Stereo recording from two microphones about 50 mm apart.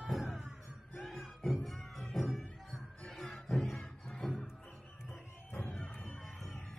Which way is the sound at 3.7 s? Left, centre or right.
Centre.